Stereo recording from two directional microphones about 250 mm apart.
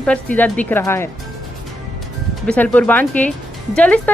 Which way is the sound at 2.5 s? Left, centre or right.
Centre.